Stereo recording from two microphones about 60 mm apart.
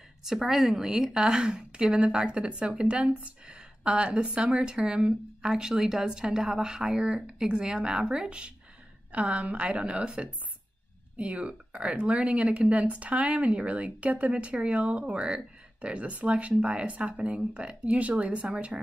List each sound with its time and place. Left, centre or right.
0.2 s a woman's voice: centre